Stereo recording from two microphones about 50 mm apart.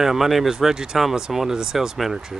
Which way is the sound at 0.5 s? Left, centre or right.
Centre.